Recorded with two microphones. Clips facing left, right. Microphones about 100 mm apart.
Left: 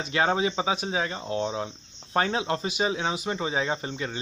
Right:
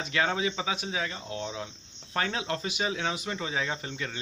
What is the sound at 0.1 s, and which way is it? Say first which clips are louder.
Speech: left 4 dB; 30° left (ahead or behind).